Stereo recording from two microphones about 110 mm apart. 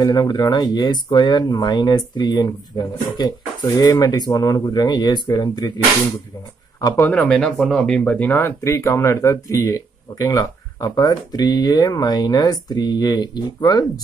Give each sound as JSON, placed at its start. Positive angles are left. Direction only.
{"t": 0.0, "sound": "speech", "side_deg": 40}
{"t": 7.0, "sound": "speech", "side_deg": 15}